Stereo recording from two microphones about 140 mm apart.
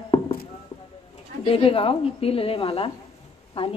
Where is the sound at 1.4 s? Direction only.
40° left (ahead or behind).